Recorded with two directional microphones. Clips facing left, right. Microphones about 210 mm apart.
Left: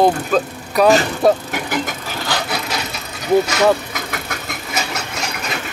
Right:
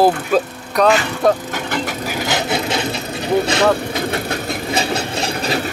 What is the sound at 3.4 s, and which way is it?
Vehicle, 30° right (ahead or behind).